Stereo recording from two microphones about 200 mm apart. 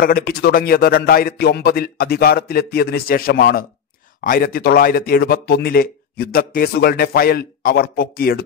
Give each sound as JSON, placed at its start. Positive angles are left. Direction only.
{"t": 0.0, "sound": "speech", "side_deg": 50}